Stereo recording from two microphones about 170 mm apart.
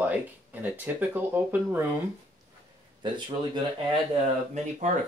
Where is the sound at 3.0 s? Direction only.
25° right (ahead or behind).